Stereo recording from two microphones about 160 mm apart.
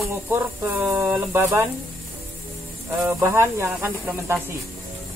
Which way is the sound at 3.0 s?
15° right (ahead or behind).